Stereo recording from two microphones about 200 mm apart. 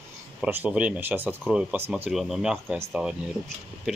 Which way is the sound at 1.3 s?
Centre (ahead or behind).